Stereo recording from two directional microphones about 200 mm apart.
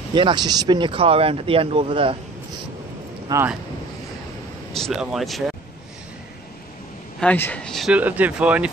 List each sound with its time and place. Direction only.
0.1 s speech: 25° right (ahead or behind)
3.3 s speech: 15° right (ahead or behind)
4.7 s speech: centre (ahead or behind)
7.2 s speech: 10° left (ahead or behind)